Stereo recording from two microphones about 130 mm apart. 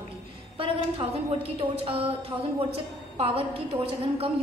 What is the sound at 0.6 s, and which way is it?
A woman's voice, 45° right (ahead or behind).